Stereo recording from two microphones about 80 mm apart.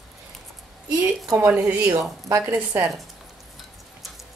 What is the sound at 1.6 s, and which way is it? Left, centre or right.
A woman's voice, centre.